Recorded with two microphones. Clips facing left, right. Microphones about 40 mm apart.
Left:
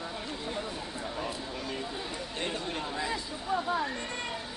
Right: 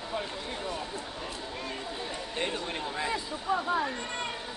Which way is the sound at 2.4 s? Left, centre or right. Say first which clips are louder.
Right 2 dB; centre.